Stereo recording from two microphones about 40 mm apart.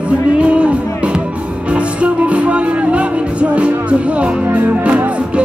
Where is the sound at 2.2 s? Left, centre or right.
Right.